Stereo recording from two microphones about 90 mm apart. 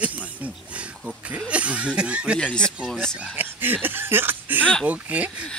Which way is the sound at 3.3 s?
20° right (ahead or behind).